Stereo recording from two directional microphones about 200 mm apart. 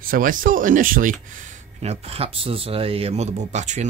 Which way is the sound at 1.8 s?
30° right (ahead or behind).